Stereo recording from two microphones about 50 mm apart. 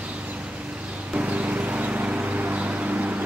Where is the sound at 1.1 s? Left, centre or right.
Right.